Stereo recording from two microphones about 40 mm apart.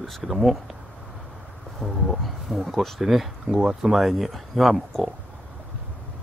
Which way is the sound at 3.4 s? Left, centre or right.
Right.